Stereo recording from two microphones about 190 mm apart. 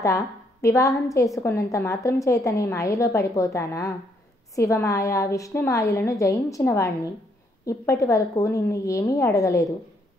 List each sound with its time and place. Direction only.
0.0 s a woman's voice: 15° left (ahead or behind)